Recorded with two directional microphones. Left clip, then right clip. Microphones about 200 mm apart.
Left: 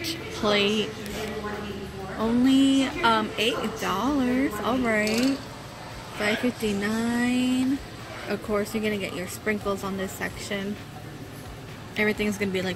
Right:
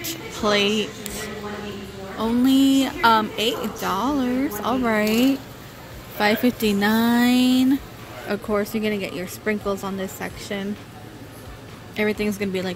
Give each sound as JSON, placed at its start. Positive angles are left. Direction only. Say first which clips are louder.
{"t": 0.0, "sound": "a sound", "louder": "right 2 dB", "side_deg": -10}
{"t": 2.1, "sound": "a woman's voice", "louder": "right 3 dB", "side_deg": -10}
{"t": 11.9, "sound": "a woman's voice", "louder": "right 2 dB", "side_deg": -15}